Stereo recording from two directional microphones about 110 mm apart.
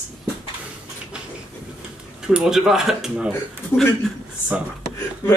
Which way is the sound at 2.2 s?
5° right (ahead or behind).